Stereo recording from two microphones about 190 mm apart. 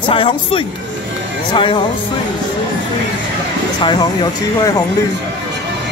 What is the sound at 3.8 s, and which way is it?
Speech, 25° left (ahead or behind).